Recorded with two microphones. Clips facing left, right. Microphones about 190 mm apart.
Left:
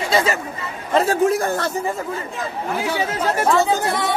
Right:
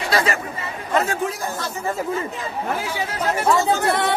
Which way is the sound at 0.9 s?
35° left (ahead or behind).